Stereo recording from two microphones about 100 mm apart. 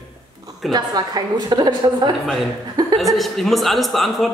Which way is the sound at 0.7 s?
40° right (ahead or behind).